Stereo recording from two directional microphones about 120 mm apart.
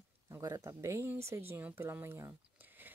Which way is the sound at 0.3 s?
25° right (ahead or behind).